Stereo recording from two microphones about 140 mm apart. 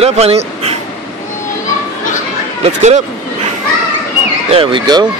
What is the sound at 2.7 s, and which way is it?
Speech, 55° right (ahead or behind).